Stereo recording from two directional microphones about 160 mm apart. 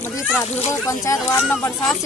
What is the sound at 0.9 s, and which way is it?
Speech, 15° left (ahead or behind).